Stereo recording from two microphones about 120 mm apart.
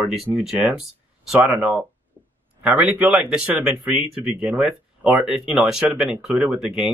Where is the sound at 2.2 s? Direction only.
20° right (ahead or behind).